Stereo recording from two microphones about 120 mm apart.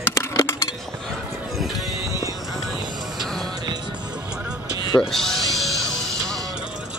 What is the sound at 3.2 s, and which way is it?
Music, 5° left (ahead or behind).